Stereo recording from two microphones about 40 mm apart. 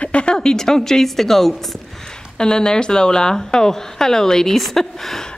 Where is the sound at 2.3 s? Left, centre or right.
Centre.